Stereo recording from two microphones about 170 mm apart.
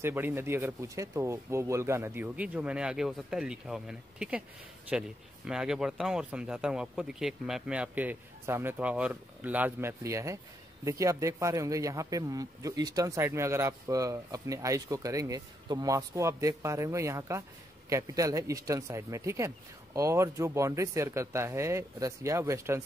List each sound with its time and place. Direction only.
0.0 s speech: 10° right (ahead or behind)
5.5 s speech: 5° right (ahead or behind)